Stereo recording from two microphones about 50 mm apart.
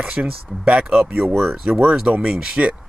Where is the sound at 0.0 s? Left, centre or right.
Right.